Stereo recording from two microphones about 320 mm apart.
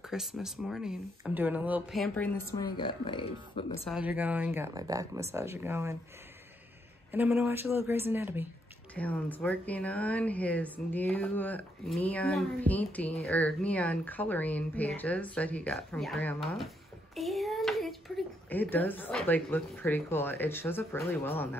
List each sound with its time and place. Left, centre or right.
0.1 s a woman's voice: centre
3.8 s speech: centre
7.1 s speech: centre
8.9 s a woman's voice: centre